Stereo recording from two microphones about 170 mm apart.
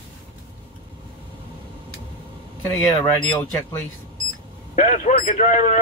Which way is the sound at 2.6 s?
15° left (ahead or behind).